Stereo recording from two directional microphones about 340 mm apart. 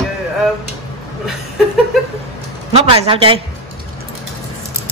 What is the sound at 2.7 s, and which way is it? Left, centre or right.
Speech, centre.